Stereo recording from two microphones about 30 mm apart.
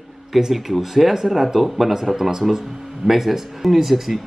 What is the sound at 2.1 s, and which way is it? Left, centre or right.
Speech, centre.